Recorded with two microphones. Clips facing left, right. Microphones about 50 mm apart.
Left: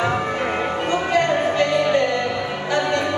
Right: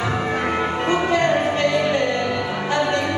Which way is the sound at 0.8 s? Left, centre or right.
Right.